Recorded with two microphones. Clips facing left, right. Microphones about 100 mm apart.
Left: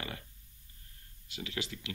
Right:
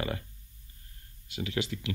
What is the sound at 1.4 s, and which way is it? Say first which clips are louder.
Speech: right 7 dB; 50° right (ahead or behind).